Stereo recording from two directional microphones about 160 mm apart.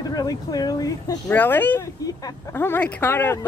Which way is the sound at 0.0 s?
25° left (ahead or behind).